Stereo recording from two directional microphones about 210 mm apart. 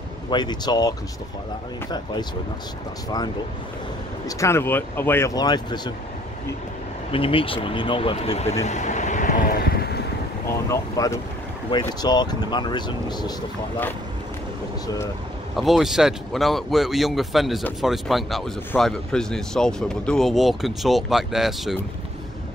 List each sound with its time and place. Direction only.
0.3 s speech: 20° left (ahead or behind)
4.4 s speech: 10° left (ahead or behind)
7.1 s speech: 25° left (ahead or behind)
8.6 s vehicle: 35° left (ahead or behind)
10.7 s speech: 15° left (ahead or behind)
15.5 s speech: centre (ahead or behind)